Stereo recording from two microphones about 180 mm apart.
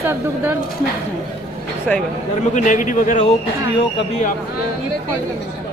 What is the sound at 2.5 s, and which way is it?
Speech, 45° left (ahead or behind).